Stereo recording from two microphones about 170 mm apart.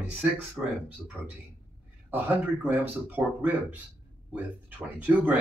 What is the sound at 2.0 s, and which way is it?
Speech, 10° right (ahead or behind).